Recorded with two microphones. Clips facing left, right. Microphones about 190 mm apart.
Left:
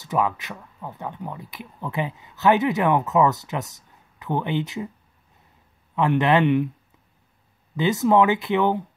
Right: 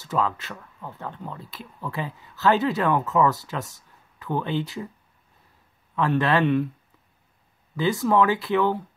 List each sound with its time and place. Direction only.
0.0 s speech: 15° left (ahead or behind)
5.9 s speech: 20° left (ahead or behind)
7.7 s speech: 20° left (ahead or behind)